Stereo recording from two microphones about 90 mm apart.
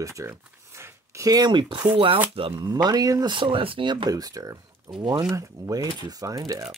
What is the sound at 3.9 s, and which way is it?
Speech, 50° right (ahead or behind).